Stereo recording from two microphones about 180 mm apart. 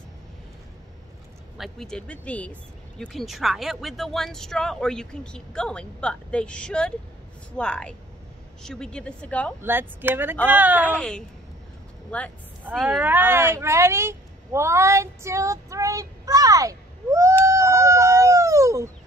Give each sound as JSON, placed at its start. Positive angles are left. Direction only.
{"t": 1.6, "sound": "speech", "side_deg": 5}
{"t": 9.6, "sound": "speech", "side_deg": -10}
{"t": 10.9, "sound": "speech", "side_deg": 5}
{"t": 17.5, "sound": "a sound", "side_deg": -15}